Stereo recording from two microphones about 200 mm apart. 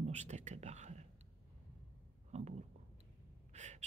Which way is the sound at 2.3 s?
35° right (ahead or behind).